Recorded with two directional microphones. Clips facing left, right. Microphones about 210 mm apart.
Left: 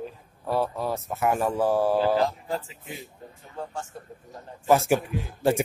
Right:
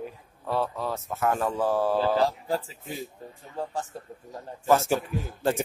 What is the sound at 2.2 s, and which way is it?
Speech, 35° right (ahead or behind).